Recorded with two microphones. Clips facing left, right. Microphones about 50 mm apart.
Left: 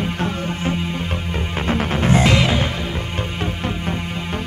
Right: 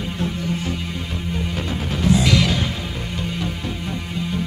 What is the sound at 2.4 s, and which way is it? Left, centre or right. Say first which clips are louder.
Music: left 2 dB; left.